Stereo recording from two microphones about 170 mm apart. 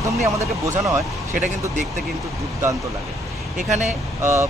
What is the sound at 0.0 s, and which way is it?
Speech, 15° right (ahead or behind).